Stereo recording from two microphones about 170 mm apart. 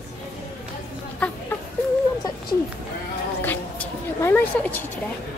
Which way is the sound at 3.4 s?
10° left (ahead or behind).